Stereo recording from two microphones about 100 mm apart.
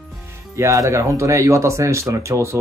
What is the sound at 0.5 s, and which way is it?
Speech, 30° right (ahead or behind).